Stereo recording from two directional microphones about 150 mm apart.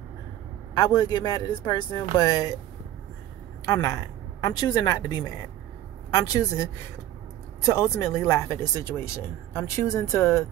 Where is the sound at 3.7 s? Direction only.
20° left (ahead or behind).